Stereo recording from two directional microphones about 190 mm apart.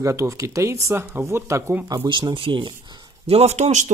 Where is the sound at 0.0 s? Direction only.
15° right (ahead or behind).